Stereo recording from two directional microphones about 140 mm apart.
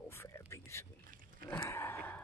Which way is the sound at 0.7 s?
20° left (ahead or behind).